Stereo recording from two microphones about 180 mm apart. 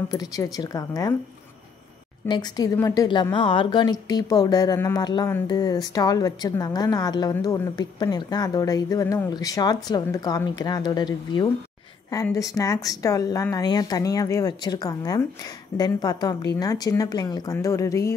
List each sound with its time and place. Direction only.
0.1 s a woman's voice: 20° left (ahead or behind)
2.2 s a woman's voice: 25° left (ahead or behind)